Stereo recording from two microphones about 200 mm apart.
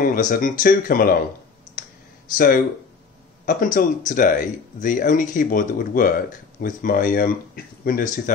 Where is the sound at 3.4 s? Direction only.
45° left (ahead or behind).